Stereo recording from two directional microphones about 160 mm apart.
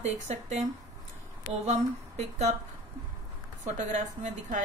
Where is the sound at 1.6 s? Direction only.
45° right (ahead or behind).